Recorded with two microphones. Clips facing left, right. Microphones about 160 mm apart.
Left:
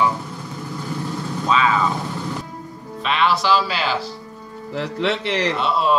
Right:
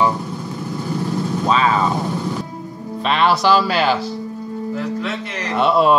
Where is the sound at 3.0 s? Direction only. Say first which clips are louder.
Right 3 dB; 40° right (ahead or behind).